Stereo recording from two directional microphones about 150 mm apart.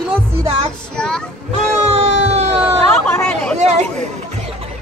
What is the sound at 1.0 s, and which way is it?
Speech, 5° left (ahead or behind).